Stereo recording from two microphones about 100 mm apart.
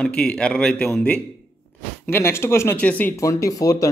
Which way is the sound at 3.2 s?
35° left (ahead or behind).